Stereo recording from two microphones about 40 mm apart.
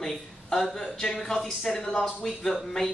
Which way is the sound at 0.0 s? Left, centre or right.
Centre.